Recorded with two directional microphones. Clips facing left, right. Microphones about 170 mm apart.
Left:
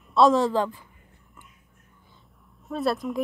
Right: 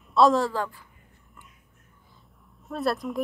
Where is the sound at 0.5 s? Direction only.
20° left (ahead or behind).